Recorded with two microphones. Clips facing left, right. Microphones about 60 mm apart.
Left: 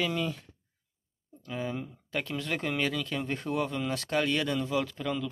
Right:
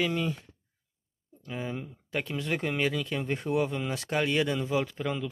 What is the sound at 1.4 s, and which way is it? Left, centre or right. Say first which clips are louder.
Speech: left 1 dB; centre.